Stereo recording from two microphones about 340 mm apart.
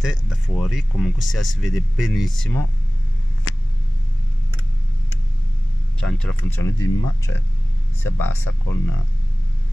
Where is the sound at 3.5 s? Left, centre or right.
Left.